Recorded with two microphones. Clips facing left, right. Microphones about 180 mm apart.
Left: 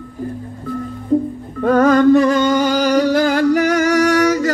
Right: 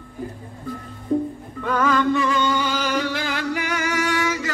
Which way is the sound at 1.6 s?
40° left (ahead or behind).